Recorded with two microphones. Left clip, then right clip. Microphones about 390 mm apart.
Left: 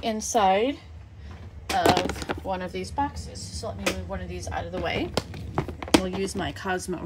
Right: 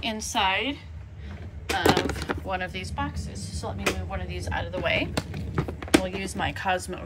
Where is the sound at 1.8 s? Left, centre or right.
Centre.